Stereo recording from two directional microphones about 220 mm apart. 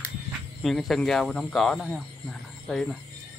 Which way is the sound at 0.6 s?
Centre (ahead or behind).